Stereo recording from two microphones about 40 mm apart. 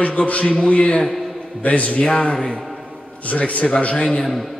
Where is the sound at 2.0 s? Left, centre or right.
Left.